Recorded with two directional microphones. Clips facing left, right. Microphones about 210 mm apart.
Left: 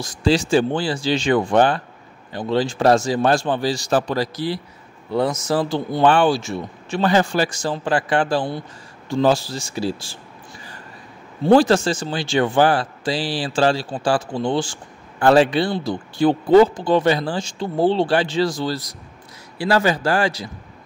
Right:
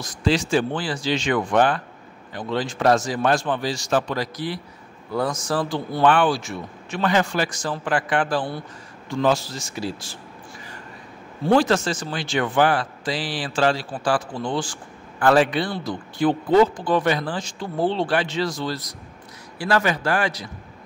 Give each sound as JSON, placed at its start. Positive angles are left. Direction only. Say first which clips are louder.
{"t": 0.0, "sound": "speech", "louder": "left 3 dB", "side_deg": 30}
{"t": 11.4, "sound": "speech", "louder": "left 4 dB", "side_deg": 30}